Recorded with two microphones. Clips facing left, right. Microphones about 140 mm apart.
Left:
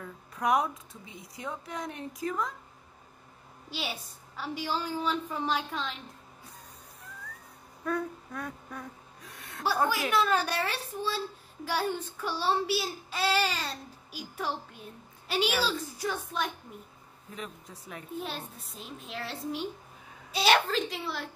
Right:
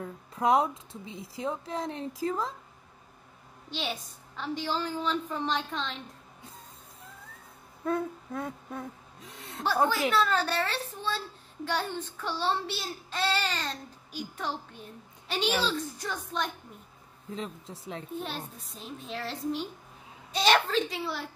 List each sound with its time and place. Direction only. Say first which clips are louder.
0.0 s speech: right 3 dB; 25° right (ahead or behind)
3.7 s a woman's voice: right 2 dB; 10° left (ahead or behind)
7.8 s a sound: right 2 dB; 25° right (ahead or behind)
10.1 s a woman's voice: even; 15° left (ahead or behind)
17.3 s speech: right 4 dB; 25° right (ahead or behind)
18.2 s a child's voice: right 1 dB; centre (ahead or behind)